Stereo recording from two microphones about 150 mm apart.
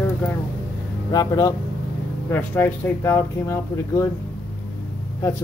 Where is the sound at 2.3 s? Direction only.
15° left (ahead or behind).